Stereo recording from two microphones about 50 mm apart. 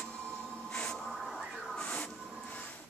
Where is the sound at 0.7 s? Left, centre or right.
Centre.